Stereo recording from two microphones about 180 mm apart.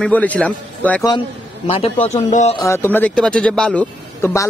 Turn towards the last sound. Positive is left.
turn(degrees=10)  # may be behind; listen again after turning